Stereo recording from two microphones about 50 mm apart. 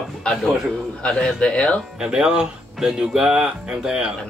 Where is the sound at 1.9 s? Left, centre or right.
Centre.